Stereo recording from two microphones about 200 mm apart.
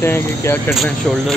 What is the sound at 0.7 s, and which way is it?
Speech, centre (ahead or behind).